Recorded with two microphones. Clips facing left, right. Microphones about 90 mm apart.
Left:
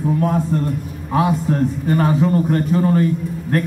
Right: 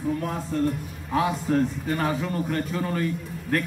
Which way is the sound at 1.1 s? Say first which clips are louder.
Left 5 dB; 30° left (ahead or behind).